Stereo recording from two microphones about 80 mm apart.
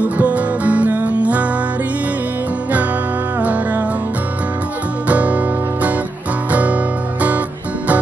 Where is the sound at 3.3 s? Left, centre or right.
Centre.